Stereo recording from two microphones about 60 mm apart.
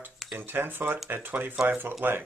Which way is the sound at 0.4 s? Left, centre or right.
Right.